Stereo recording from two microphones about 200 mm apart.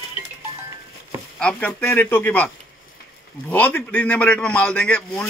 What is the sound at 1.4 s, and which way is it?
A man's voice, 5° left (ahead or behind).